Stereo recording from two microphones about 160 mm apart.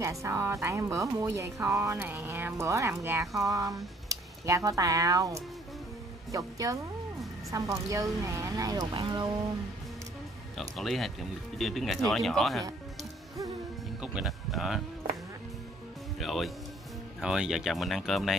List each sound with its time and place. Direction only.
0.0 s a woman's voice: 20° right (ahead or behind)
10.8 s speech: centre (ahead or behind)
14.0 s speech: 5° right (ahead or behind)
16.2 s speech: centre (ahead or behind)